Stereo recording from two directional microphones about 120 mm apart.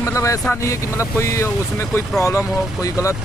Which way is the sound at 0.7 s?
25° left (ahead or behind).